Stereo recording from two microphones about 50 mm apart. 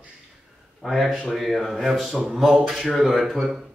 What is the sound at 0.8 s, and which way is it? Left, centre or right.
Speech, centre.